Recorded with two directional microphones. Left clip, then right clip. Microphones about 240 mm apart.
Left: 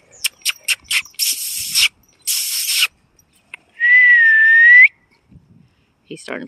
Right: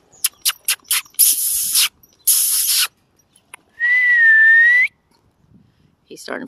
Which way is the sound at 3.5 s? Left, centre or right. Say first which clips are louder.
Left 4 dB; centre.